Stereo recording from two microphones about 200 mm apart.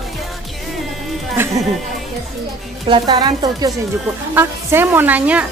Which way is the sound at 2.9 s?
20° right (ahead or behind).